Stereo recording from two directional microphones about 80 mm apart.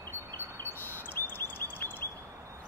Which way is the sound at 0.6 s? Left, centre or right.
Left.